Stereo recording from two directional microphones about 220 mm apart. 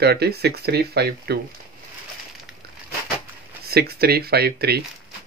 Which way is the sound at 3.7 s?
45° right (ahead or behind).